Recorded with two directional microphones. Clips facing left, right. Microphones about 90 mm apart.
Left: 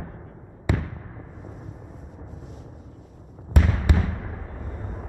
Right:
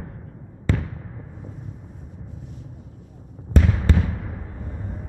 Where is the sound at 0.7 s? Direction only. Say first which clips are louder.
Right 1 dB; 15° left (ahead or behind).